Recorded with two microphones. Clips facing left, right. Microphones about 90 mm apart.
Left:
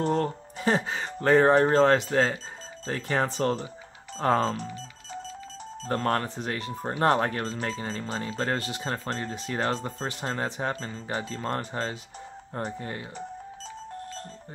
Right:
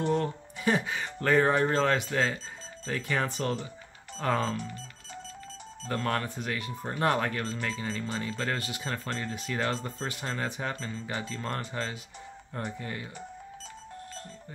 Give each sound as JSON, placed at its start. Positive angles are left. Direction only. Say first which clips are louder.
{"t": 0.0, "sound": "speech", "louder": "left 2 dB", "side_deg": 40}
{"t": 5.9, "sound": "speech", "louder": "left 4 dB", "side_deg": 40}